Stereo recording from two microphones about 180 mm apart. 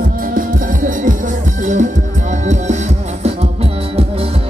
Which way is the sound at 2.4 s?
40° right (ahead or behind).